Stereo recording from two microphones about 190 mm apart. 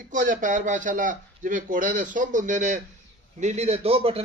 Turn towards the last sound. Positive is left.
turn(degrees=-30)  # may be behind; listen again after turning